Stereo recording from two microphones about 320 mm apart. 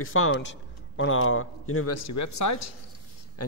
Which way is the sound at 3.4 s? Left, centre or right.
Left.